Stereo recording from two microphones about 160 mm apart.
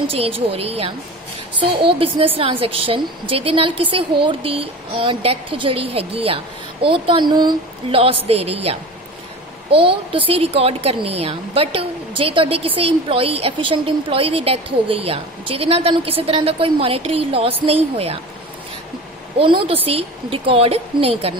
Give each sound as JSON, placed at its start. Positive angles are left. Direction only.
{"t": 0.1, "sound": "speech", "side_deg": -40}
{"t": 2.0, "sound": "speech", "side_deg": -35}
{"t": 19.3, "sound": "speech", "side_deg": -35}